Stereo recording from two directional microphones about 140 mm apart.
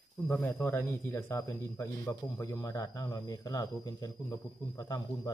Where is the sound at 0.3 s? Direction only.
15° left (ahead or behind).